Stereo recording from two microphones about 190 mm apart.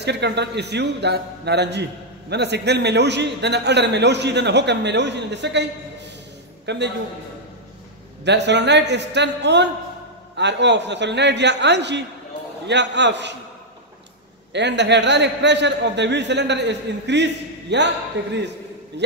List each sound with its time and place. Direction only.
0.0 s a man's voice: 60° right (ahead or behind)
8.3 s a man's voice: 65° right (ahead or behind)
14.5 s a man's voice: 65° right (ahead or behind)